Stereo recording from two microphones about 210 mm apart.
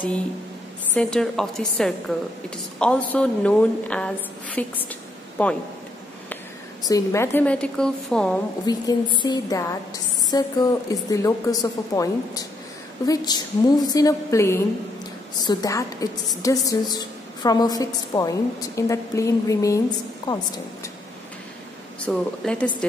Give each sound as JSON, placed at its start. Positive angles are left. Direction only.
{"t": 0.9, "sound": "a woman's voice", "side_deg": 5}
{"t": 6.9, "sound": "a woman's voice", "side_deg": 15}
{"t": 8.6, "sound": "a woman's voice", "side_deg": 20}
{"t": 22.0, "sound": "a woman's voice", "side_deg": 5}